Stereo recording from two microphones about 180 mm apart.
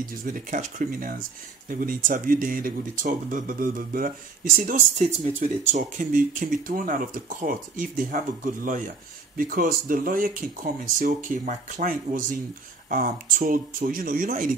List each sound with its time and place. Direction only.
0.0 s speech: 50° right (ahead or behind)